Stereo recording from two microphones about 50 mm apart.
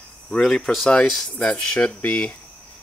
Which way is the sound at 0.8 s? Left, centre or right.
Centre.